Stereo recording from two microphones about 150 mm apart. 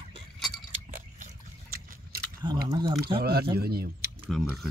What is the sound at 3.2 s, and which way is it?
Speech, 90° right.